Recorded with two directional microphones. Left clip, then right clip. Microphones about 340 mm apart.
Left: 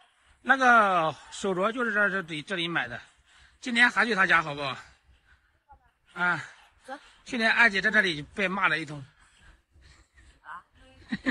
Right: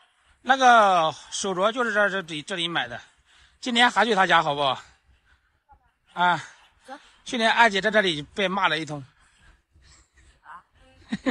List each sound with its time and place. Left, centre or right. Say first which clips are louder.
0.4 s a woman's voice: right 4 dB; centre
6.1 s a woman's voice: right 5 dB; centre
10.4 s a sound: left 1 dB; centre